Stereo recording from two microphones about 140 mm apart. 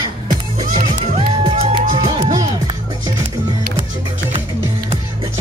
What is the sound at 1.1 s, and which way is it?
Music, 45° right (ahead or behind).